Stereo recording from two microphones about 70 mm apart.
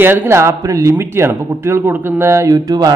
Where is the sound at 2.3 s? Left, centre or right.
Right.